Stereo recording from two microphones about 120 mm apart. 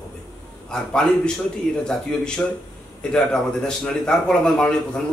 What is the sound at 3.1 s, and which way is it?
A man's voice, 5° left (ahead or behind).